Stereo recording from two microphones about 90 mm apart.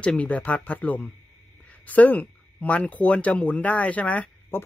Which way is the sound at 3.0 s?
15° left (ahead or behind).